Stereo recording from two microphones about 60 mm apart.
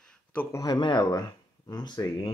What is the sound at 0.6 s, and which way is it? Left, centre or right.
A man's voice, left.